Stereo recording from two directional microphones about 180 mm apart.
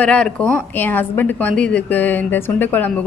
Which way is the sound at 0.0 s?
5° left (ahead or behind).